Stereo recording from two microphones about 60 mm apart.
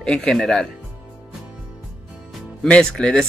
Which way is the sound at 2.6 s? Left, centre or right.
Centre.